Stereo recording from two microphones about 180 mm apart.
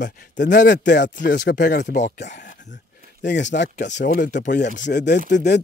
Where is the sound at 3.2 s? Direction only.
75° left (ahead or behind).